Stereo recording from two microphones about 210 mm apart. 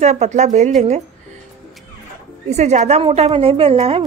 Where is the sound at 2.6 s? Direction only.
30° right (ahead or behind).